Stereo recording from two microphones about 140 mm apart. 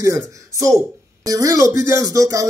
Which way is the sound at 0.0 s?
20° right (ahead or behind).